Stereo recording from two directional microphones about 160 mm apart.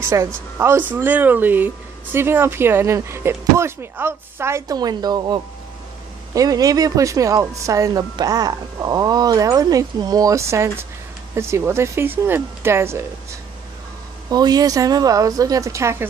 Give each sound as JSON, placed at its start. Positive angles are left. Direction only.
{"t": 0.0, "sound": "speech", "side_deg": -20}
{"t": 14.3, "sound": "speech", "side_deg": -25}